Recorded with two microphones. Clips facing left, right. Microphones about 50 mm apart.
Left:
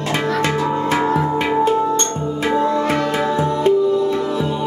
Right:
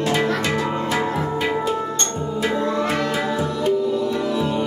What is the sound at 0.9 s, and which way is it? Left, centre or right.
Music, left.